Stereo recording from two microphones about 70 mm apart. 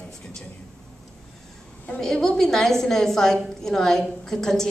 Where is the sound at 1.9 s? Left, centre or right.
Centre.